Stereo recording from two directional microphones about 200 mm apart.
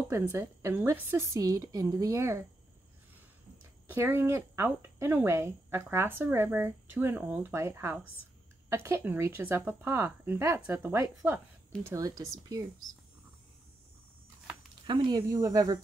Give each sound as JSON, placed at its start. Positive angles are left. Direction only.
{"t": 0.1, "sound": "speech", "side_deg": -10}
{"t": 3.9, "sound": "speech", "side_deg": -10}
{"t": 14.9, "sound": "speech", "side_deg": -20}